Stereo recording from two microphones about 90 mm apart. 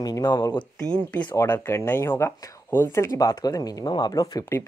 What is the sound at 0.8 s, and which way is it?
Speech, 15° left (ahead or behind).